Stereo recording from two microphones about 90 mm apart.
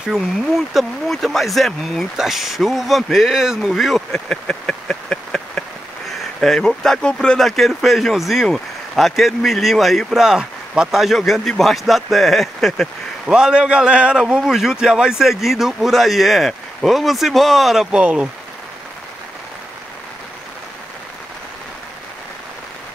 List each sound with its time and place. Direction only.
0.0 s speech: centre (ahead or behind)
13.3 s speech: 10° right (ahead or behind)